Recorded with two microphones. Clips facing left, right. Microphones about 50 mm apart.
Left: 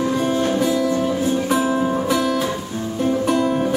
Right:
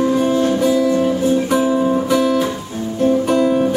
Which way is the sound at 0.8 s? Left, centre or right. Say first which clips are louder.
Right 4 dB; right.